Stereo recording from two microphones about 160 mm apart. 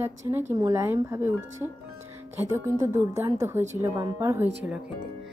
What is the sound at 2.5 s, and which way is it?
A woman's voice, 20° right (ahead or behind).